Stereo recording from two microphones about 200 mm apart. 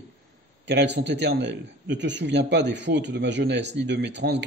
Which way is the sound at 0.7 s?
60° right (ahead or behind).